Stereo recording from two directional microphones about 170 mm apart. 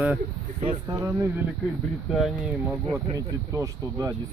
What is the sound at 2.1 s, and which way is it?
Speech, centre (ahead or behind).